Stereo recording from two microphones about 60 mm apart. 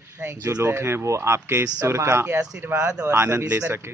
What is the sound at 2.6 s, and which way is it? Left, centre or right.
Mantra, right.